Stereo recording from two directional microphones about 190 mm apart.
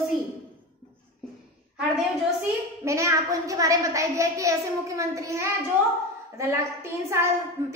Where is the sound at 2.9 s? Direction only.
15° right (ahead or behind).